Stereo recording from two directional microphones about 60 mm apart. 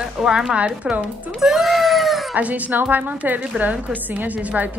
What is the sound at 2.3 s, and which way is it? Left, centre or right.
Speech, right.